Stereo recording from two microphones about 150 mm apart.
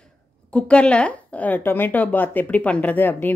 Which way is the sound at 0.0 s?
5° left (ahead or behind).